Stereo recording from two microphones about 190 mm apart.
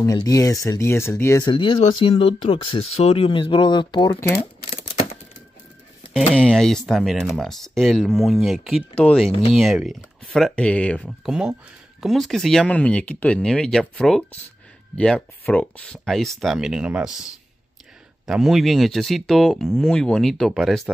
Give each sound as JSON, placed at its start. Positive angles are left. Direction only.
{"t": 0.0, "sound": "speech", "side_deg": 20}
{"t": 1.5, "sound": "speech", "side_deg": 25}
{"t": 4.1, "sound": "speech", "side_deg": 15}
{"t": 4.4, "sound": "typewriter", "side_deg": 35}
{"t": 6.1, "sound": "speech", "side_deg": 5}